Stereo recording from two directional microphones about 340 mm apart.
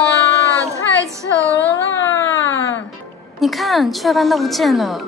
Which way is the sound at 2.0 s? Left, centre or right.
Left.